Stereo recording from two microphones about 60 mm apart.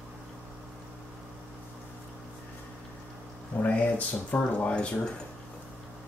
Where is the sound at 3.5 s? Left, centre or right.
Left.